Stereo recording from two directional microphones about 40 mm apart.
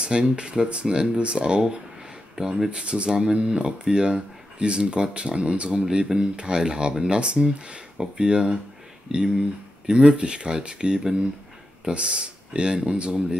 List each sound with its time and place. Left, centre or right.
0.0 s speech: right
2.3 s speech: centre